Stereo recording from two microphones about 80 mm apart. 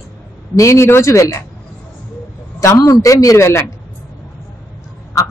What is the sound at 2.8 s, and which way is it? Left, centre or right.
Speech, left.